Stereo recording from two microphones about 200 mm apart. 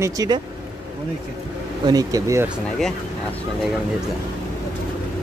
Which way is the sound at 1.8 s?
20° right (ahead or behind).